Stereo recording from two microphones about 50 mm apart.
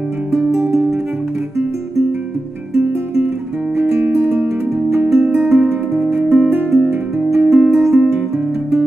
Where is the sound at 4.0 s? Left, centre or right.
Right.